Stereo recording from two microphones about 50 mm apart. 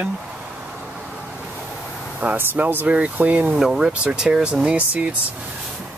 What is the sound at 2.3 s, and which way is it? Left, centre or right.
Speech, right.